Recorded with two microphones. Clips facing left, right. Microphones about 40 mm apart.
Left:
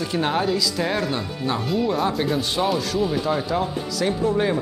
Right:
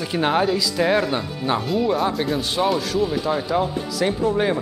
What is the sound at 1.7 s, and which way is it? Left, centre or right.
Speech, centre.